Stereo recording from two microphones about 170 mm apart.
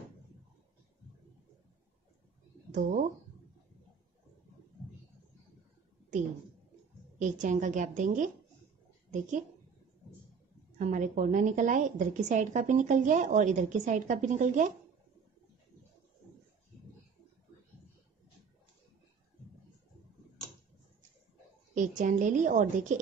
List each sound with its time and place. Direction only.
2.7 s a woman's voice: 50° right (ahead or behind)
7.2 s a woman's voice: 50° right (ahead or behind)
10.8 s a woman's voice: 50° right (ahead or behind)
21.7 s a woman's voice: 45° right (ahead or behind)